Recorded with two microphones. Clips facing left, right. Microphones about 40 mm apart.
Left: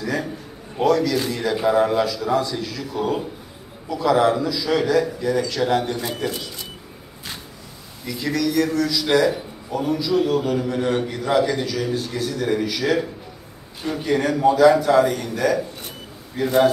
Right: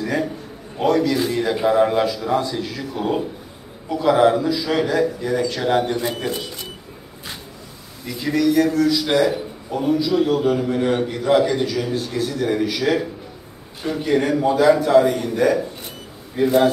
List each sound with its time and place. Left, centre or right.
0.9 s a man's voice: right
8.1 s a man's voice: centre